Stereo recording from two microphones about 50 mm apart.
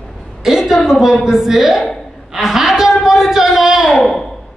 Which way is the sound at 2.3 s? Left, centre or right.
Centre.